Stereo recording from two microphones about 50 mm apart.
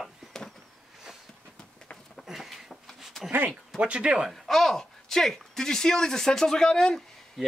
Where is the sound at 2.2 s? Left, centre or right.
Centre.